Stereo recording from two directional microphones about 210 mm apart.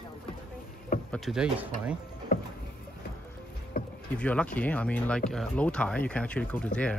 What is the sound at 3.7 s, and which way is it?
Rowboat, 45° left (ahead or behind).